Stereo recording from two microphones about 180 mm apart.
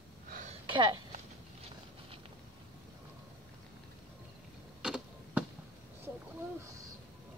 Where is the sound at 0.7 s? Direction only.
25° right (ahead or behind).